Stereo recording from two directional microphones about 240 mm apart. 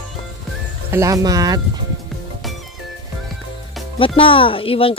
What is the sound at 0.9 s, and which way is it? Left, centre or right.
Speech, centre.